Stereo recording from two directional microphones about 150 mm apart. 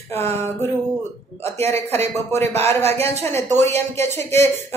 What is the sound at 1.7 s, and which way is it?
Speech, 15° left (ahead or behind).